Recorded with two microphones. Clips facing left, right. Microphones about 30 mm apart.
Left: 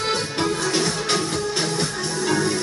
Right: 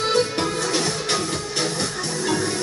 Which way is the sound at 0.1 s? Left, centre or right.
Centre.